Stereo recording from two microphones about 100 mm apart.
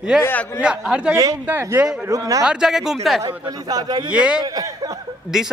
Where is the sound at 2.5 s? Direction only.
5° right (ahead or behind).